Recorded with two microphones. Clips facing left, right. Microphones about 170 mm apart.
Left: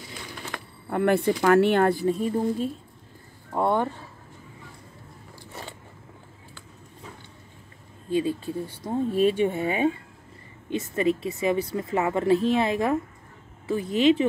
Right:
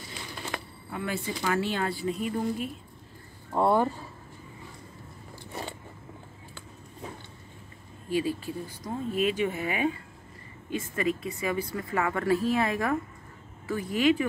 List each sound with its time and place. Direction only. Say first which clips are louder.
0.8 s speech: left 12 dB; 60° left (ahead or behind)
2.0 s a woman's voice: left 5 dB; 35° left (ahead or behind)
3.5 s speech: even; 5° right (ahead or behind)
5.5 s biting: right 3 dB; 15° right (ahead or behind)
8.1 s speech: left 3 dB; 20° left (ahead or behind)